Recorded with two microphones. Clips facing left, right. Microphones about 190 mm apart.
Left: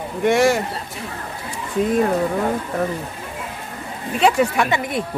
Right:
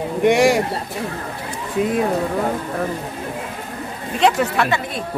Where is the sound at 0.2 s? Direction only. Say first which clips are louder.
Right 2 dB; 15° right (ahead or behind).